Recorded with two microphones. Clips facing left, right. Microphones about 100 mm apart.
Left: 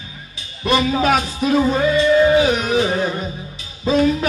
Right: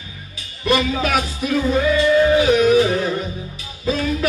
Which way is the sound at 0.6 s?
30° left (ahead or behind).